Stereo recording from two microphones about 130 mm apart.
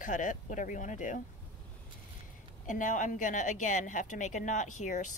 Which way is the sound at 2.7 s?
80° left.